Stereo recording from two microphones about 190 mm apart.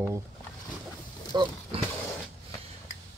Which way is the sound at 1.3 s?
25° right (ahead or behind).